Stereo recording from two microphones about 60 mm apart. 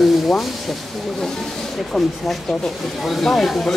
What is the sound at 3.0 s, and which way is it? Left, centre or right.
Speech, centre.